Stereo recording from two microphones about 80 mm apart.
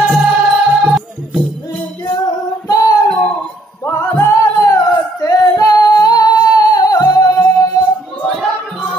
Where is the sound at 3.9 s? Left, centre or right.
Left.